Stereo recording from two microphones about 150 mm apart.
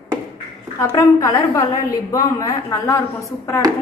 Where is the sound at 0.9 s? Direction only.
20° left (ahead or behind).